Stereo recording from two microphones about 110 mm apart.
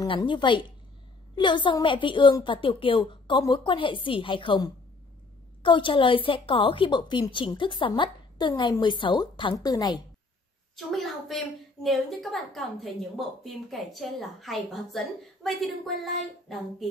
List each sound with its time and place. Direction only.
0.0 s speech: 45° left (ahead or behind)
10.9 s a woman's voice: centre (ahead or behind)